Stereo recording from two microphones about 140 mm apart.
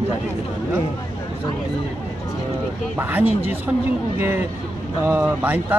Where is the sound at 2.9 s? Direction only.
15° right (ahead or behind).